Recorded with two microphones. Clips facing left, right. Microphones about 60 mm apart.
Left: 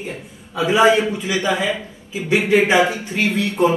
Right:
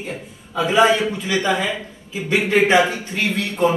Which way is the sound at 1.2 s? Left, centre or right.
Centre.